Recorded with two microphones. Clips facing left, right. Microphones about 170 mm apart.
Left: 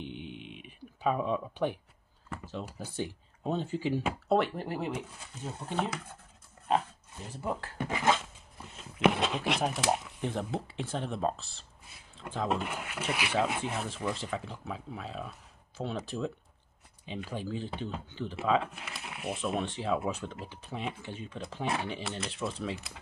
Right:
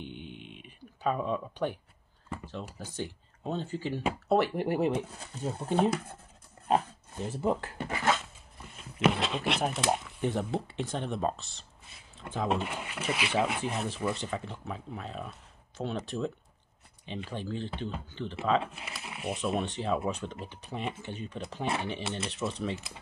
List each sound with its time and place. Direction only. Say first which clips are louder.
0.0 s a sound: left 1 dB; centre (ahead or behind)
2.4 s speech: left 5 dB; 10° left (ahead or behind)
4.7 s speech: right 7 dB; 25° right (ahead or behind)
7.2 s speech: right 6 dB; 25° right (ahead or behind)
7.9 s dog: left 1 dB; 20° left (ahead or behind)
8.7 s a sound: left 1 dB; 15° left (ahead or behind)
9.4 s speech: even; centre (ahead or behind)
13.1 s speech: right 2 dB; 20° right (ahead or behind)
13.7 s speech: right 2 dB; centre (ahead or behind)